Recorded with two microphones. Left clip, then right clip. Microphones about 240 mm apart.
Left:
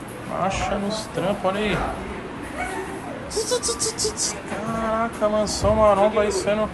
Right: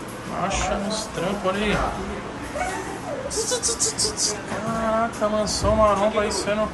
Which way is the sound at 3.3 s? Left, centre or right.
Centre.